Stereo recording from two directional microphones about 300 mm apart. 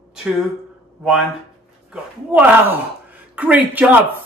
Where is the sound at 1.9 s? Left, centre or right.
Centre.